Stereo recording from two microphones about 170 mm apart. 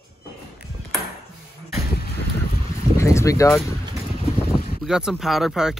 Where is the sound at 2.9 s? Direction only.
15° left (ahead or behind).